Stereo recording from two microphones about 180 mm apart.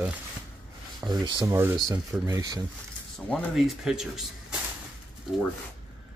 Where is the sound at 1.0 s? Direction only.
25° right (ahead or behind).